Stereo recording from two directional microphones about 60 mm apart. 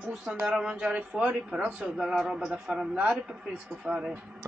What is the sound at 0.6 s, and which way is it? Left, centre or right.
Speech, centre.